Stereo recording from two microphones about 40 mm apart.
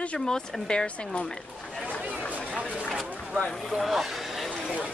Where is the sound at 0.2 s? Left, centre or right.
Left.